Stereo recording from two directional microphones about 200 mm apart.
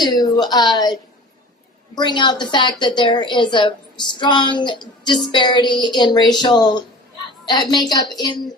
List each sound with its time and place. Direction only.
0.1 s a woman's voice: 20° left (ahead or behind)